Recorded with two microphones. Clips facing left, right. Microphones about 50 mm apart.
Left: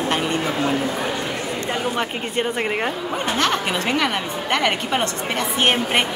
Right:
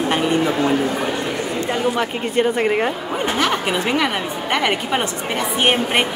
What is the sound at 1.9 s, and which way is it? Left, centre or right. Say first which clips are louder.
A woman's voice: right 4 dB; centre.